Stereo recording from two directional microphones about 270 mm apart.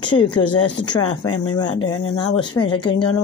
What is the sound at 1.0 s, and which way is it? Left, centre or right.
Speech, left.